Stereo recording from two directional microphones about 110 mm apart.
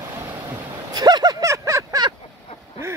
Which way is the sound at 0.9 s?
40° right (ahead or behind).